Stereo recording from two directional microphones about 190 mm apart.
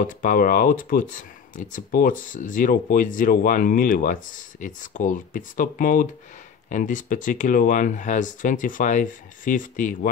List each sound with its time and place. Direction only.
0.0 s speech: 45° left (ahead or behind)